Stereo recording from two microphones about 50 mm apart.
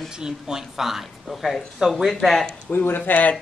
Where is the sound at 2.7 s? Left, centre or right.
Left.